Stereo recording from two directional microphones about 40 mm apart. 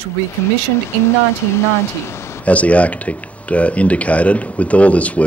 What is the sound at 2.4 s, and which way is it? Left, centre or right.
Speech, left.